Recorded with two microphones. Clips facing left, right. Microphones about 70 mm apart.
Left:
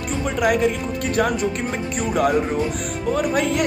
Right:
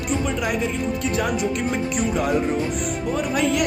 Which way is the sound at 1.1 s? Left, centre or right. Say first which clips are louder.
Left 5 dB; left.